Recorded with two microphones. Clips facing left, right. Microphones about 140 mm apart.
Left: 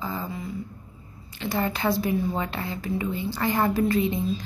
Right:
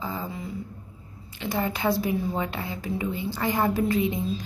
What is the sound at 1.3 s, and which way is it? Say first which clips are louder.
Speech: left 1 dB; 15° right (ahead or behind).